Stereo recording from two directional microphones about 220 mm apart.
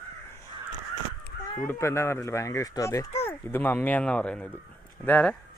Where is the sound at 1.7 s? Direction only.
10° left (ahead or behind).